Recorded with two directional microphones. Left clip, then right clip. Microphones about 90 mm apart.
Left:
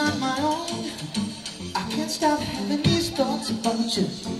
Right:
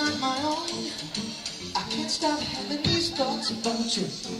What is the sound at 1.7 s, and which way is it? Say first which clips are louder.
Music: left 2 dB; 30° left (ahead or behind).